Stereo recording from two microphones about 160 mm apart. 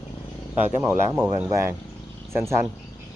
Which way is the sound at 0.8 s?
15° right (ahead or behind).